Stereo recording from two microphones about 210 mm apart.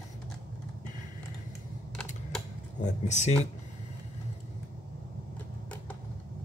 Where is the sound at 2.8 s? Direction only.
35° left (ahead or behind).